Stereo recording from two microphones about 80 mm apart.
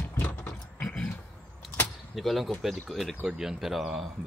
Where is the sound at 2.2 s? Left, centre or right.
Centre.